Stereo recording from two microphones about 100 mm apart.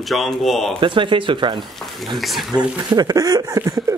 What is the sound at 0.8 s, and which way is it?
Speech, 55° right (ahead or behind).